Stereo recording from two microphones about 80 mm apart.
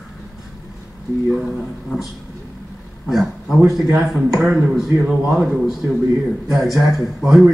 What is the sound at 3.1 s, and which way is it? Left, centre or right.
A man's voice, centre.